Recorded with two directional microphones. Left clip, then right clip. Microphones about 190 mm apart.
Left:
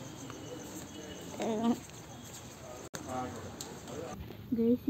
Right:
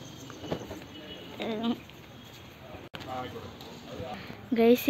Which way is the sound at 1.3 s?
5° left (ahead or behind).